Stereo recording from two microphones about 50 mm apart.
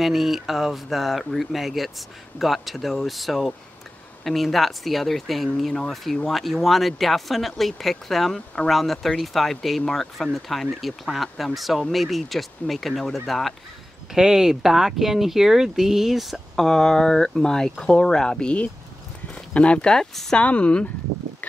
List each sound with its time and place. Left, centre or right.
0.0 s speech: centre
14.1 s speech: centre
16.6 s speech: centre; by 20.8 s left